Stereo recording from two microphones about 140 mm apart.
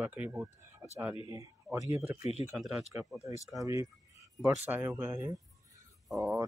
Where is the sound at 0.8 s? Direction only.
20° right (ahead or behind).